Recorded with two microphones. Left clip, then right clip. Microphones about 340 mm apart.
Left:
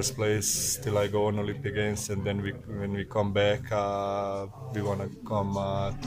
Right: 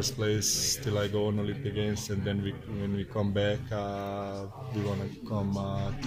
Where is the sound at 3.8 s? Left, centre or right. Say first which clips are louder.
Left 6 dB; left.